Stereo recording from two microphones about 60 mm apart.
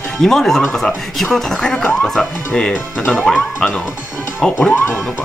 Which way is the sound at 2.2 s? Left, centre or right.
Centre.